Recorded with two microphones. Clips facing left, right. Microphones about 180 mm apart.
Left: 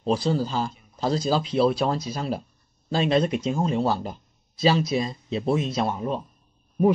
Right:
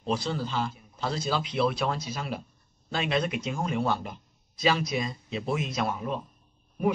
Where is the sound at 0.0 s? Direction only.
35° left (ahead or behind).